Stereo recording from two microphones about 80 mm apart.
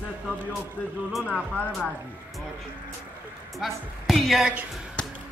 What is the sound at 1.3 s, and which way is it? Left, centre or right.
Music, centre.